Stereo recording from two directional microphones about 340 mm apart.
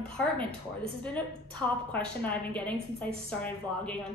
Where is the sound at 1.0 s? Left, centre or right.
Centre.